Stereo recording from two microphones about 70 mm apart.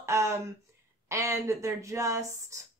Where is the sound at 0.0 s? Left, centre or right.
Right.